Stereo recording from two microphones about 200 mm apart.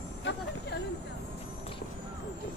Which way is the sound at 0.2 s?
60° left (ahead or behind).